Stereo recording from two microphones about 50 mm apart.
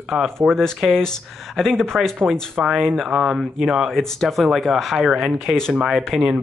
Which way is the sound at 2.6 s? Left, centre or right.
Centre.